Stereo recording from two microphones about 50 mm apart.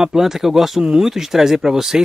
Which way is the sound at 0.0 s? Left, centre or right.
Centre.